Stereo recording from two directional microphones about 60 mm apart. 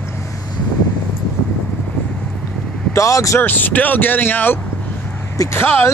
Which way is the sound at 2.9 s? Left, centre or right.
Left.